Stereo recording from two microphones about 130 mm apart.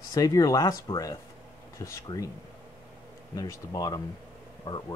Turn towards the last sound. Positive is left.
turn(degrees=25)  # may be behind; listen again after turning